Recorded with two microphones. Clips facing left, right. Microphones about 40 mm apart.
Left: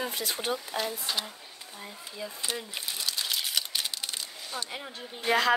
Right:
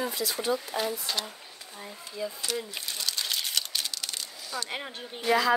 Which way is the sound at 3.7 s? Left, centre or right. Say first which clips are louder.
Even; centre.